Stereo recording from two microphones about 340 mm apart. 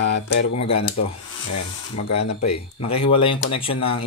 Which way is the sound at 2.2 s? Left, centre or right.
Left.